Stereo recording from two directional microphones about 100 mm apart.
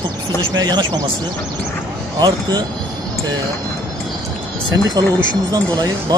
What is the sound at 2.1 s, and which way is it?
Speech, 40° right (ahead or behind).